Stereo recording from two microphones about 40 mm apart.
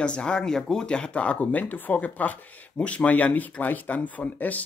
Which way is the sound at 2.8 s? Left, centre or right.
Left.